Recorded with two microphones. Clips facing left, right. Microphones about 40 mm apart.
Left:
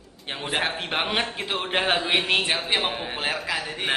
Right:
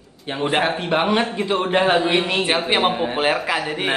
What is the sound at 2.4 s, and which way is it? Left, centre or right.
Speech, right.